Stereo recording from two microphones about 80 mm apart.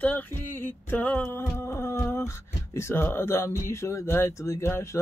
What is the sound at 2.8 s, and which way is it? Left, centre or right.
Speech, left.